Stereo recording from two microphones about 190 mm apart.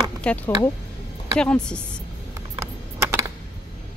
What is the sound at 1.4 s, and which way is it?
Speech, 5° left (ahead or behind).